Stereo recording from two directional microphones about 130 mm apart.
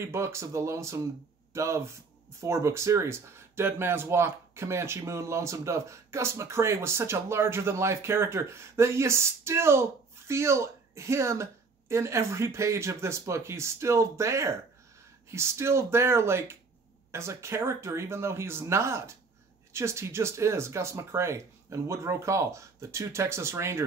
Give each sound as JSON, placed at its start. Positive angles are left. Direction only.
{"t": 0.0, "sound": "speech", "side_deg": -20}